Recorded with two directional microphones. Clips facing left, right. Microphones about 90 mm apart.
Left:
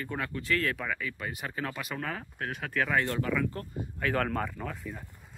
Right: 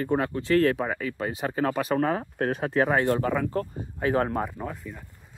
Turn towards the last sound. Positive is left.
turn(degrees=-15)  # may be behind; listen again after turning